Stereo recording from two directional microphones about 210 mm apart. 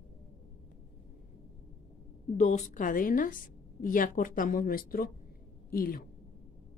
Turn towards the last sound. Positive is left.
turn(degrees=45)  # may be behind; listen again after turning